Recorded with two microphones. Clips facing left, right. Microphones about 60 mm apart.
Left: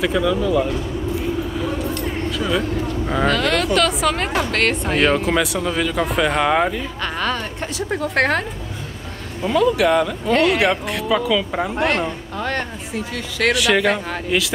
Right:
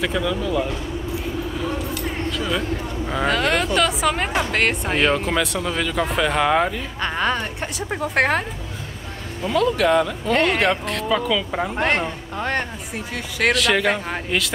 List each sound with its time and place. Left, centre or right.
0.0 s speech: centre
2.3 s speech: centre
3.3 s speech: centre
7.0 s speech: centre
9.4 s speech: centre
12.4 s speech: centre
12.9 s speech: centre